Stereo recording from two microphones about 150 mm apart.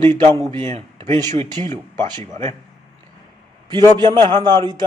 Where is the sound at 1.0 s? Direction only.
35° right (ahead or behind).